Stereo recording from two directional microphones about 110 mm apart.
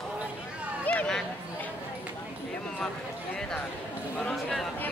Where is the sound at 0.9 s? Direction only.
10° left (ahead or behind).